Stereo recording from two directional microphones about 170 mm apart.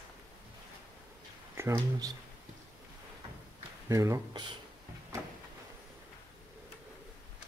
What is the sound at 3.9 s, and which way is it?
Speech, 20° right (ahead or behind).